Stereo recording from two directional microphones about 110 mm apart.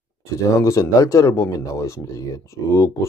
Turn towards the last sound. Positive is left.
turn(degrees=25)  # may be behind; listen again after turning